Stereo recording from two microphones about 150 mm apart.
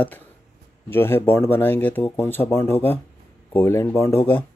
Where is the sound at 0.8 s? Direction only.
15° left (ahead or behind).